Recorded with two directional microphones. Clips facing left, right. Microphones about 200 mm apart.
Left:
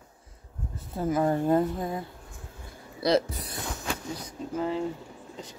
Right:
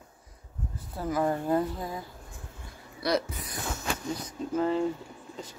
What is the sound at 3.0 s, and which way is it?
Speech, 30° left (ahead or behind).